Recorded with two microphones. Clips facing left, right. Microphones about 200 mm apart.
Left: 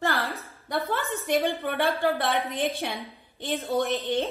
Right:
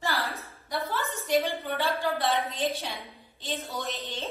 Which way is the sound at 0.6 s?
60° left (ahead or behind).